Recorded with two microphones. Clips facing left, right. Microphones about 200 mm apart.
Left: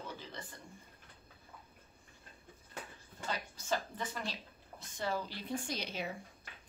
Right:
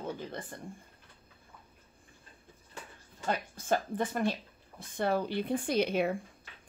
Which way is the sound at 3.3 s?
55° right (ahead or behind).